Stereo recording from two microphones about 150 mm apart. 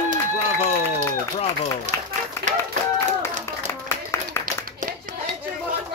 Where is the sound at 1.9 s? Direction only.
55° right (ahead or behind).